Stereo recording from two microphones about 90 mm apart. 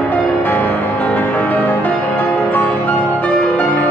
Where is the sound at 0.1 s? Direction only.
20° left (ahead or behind).